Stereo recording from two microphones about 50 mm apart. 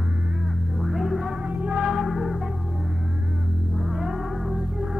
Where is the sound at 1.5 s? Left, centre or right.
Right.